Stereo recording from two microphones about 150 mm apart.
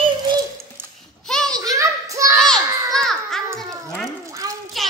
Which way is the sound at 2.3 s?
5° left (ahead or behind).